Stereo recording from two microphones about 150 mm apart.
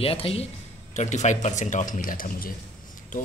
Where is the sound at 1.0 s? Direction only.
50° left (ahead or behind).